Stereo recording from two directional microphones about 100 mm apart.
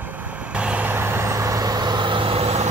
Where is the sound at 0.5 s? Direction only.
15° right (ahead or behind).